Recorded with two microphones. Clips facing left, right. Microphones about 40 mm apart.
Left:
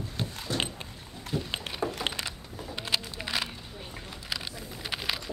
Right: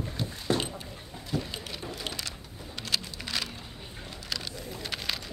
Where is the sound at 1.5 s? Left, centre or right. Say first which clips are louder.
Left 6 dB; left.